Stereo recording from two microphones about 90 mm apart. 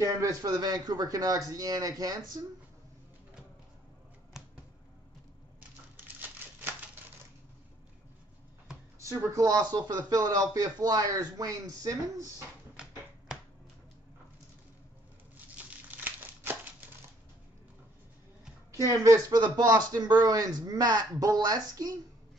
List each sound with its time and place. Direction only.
0.0 s speech: 45° right (ahead or behind)
9.0 s speech: 35° right (ahead or behind)
15.3 s crumpling: 20° right (ahead or behind)
18.7 s a woman's voice: 35° right (ahead or behind)
19.3 s speech: 50° right (ahead or behind)